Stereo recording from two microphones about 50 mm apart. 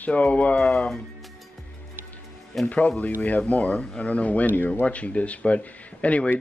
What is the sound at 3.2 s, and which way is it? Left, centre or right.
Speech, left.